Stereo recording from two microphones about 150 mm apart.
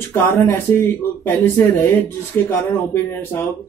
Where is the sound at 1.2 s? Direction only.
15° left (ahead or behind).